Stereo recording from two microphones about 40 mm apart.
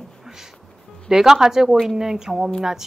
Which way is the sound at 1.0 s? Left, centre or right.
Centre.